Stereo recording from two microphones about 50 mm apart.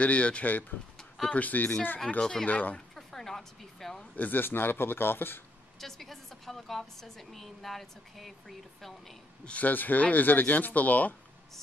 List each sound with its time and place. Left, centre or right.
0.0 s speech: left
0.5 s speech: left
3.0 s a sound: centre
4.1 s a man's voice: left
5.8 s a woman's voice: centre
9.4 s speech: left
9.7 s speech: left